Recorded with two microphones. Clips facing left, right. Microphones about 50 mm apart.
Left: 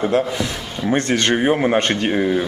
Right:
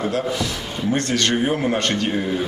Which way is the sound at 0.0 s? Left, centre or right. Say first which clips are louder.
Left 4 dB; left.